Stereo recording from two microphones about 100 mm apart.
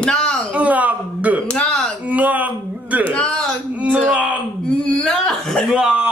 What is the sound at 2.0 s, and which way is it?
Speech, 15° right (ahead or behind).